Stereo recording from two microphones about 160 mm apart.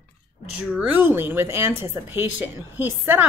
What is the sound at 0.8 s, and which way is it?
Speech, 15° right (ahead or behind).